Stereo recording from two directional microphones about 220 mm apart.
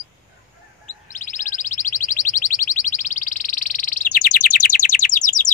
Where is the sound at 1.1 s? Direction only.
35° left (ahead or behind).